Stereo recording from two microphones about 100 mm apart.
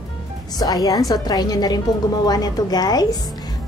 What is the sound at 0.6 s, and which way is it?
A woman's voice, 40° left (ahead or behind).